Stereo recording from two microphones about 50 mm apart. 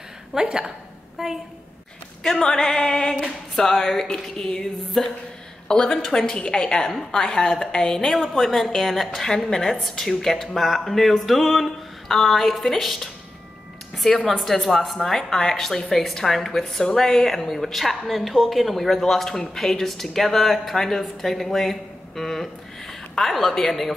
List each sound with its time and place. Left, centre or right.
0.3 s a woman's voice: centre
2.2 s a woman's voice: centre